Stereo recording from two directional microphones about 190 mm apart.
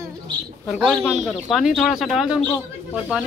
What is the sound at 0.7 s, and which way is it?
Speech, centre (ahead or behind).